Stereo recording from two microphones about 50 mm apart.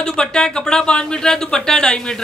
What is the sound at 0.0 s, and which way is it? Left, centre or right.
Speech, centre.